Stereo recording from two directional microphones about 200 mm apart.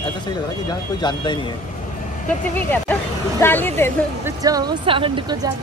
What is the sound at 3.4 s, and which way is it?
Speech, 10° left (ahead or behind).